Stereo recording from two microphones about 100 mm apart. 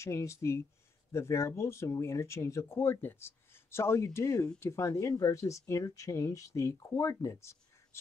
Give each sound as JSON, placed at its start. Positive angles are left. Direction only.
{"t": 0.0, "sound": "speech", "side_deg": 30}